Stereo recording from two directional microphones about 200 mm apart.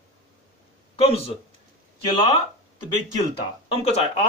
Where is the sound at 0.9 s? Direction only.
30° left (ahead or behind).